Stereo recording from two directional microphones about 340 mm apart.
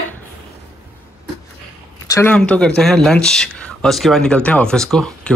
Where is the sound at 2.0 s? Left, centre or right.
Centre.